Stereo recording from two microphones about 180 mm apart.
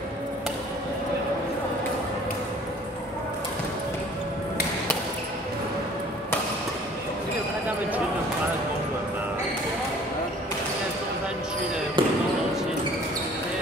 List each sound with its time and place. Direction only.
12.0 s basketball bounce: 25° right (ahead or behind)